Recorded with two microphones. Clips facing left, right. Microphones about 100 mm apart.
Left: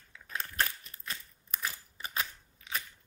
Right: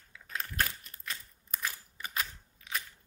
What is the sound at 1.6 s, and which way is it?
Scissors, 25° left (ahead or behind).